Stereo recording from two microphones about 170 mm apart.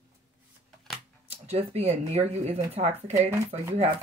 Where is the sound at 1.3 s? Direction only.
40° right (ahead or behind).